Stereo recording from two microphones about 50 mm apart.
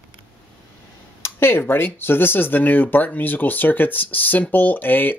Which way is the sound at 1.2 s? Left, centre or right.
Left.